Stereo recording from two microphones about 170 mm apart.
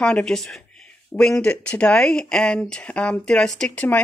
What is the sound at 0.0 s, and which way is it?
Speech, 5° left (ahead or behind).